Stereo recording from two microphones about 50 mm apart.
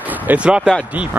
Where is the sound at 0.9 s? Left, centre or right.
Right.